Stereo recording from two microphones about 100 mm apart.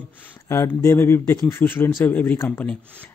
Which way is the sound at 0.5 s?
25° left (ahead or behind).